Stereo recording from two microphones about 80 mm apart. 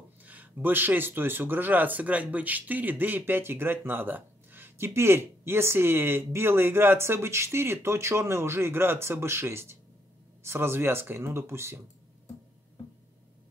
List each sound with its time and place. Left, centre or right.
0.2 s speech: right